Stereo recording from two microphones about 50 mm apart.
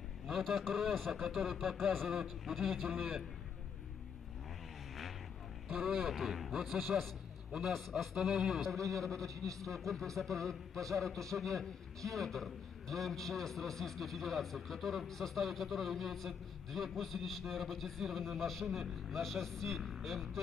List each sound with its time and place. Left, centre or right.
0.3 s speech: centre
5.7 s a man's voice: centre
9.0 s a man's voice: centre
9.3 s a man's voice: right
9.7 s speech: centre